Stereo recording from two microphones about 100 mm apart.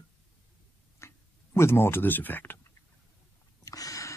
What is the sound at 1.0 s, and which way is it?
Speech, 25° left (ahead or behind).